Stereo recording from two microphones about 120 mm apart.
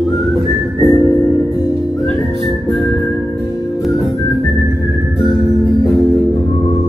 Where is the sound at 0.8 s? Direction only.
25° left (ahead or behind).